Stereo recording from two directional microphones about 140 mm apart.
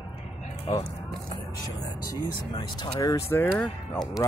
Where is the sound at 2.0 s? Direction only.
35° left (ahead or behind).